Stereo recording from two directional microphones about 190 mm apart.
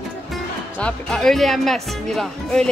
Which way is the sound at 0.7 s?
5° left (ahead or behind).